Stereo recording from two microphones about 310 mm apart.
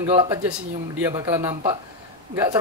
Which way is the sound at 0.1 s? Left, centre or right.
Centre.